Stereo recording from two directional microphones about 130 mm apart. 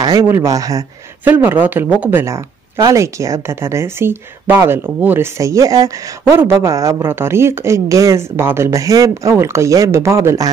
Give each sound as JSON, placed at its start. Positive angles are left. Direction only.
{"t": 0.0, "sound": "speech", "side_deg": -30}
{"t": 1.2, "sound": "speech", "side_deg": -15}